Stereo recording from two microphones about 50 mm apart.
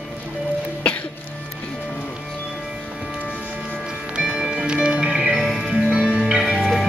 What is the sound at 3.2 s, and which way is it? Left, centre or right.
Music, right.